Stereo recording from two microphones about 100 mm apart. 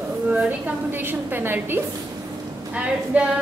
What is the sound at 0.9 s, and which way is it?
A woman's voice, 20° right (ahead or behind).